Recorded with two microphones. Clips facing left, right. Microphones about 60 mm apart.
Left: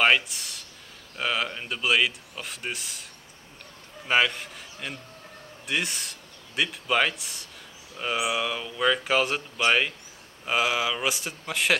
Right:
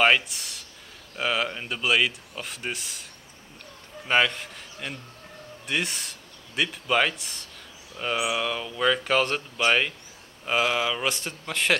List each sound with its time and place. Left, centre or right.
0.0 s speech: centre
4.1 s speech: centre